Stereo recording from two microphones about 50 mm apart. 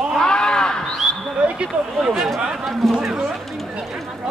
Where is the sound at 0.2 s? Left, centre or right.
Centre.